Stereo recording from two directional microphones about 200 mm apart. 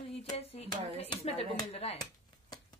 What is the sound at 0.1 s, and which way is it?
Speech, 30° left (ahead or behind).